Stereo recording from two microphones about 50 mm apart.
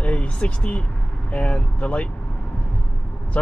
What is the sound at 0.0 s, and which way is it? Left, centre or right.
Vehicle, left.